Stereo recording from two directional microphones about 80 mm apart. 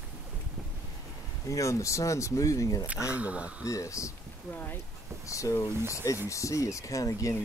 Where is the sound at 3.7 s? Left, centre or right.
Left.